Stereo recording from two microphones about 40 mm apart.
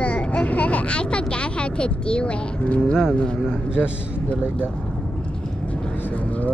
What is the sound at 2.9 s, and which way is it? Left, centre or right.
Speech, centre.